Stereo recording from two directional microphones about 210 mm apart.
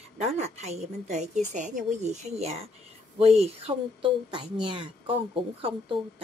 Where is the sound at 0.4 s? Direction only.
30° right (ahead or behind).